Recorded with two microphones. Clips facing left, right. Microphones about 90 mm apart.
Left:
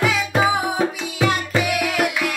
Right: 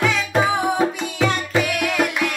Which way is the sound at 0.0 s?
5° left (ahead or behind).